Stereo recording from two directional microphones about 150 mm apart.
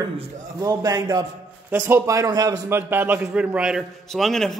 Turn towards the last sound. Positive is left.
turn(degrees=0)  # may be behind; listen again after turning